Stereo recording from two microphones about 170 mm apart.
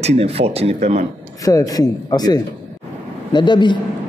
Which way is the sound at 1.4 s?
20° left (ahead or behind).